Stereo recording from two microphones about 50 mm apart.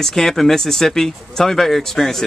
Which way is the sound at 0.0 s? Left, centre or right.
Centre.